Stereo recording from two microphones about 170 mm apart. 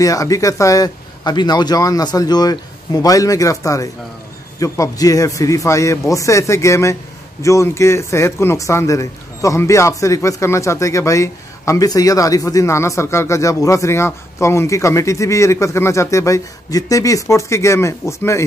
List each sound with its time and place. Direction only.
0.0 s a man's voice: 20° left (ahead or behind)